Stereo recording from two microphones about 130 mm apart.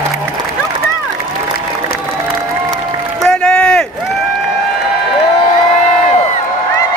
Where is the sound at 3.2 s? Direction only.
5° left (ahead or behind).